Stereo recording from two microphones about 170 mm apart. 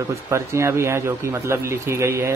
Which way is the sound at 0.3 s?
15° right (ahead or behind).